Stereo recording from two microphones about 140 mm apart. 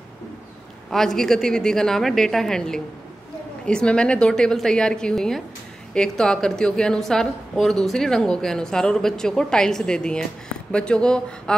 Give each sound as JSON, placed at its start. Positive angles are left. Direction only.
{"t": 0.8, "sound": "a woman's voice", "side_deg": 5}